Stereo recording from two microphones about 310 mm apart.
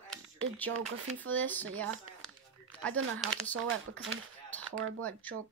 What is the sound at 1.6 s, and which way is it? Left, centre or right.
Speech, right.